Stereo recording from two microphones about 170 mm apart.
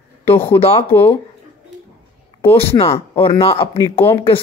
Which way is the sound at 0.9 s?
15° left (ahead or behind).